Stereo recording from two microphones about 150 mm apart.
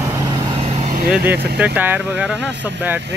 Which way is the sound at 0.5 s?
45° right (ahead or behind).